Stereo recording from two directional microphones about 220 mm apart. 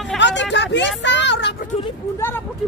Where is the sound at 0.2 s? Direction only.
55° left (ahead or behind).